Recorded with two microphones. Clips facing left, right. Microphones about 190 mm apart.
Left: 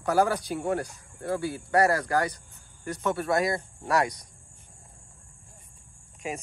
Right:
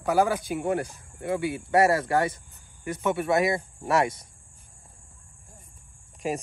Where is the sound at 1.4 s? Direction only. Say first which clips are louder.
Right 2 dB; 20° right (ahead or behind).